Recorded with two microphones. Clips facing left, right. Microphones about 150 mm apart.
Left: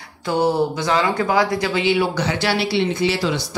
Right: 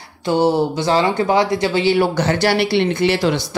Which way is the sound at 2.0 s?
45° right (ahead or behind).